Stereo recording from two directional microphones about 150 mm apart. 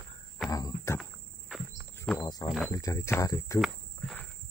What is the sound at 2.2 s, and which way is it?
Speech, 25° left (ahead or behind).